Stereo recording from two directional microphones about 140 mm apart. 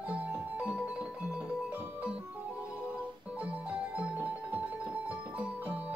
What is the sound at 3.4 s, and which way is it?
Music, 10° right (ahead or behind).